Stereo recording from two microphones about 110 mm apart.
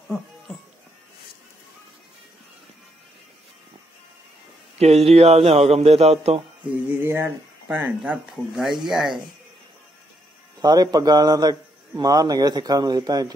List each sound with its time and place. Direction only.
4.7 s a man's voice: 65° right (ahead or behind)
6.6 s a sound: 15° right (ahead or behind)
7.6 s speech: 20° right (ahead or behind)
8.0 s speech: 5° right (ahead or behind)
10.6 s a man's voice: 35° right (ahead or behind)